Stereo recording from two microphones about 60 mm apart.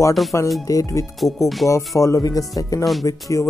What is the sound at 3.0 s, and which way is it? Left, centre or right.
Speech, left.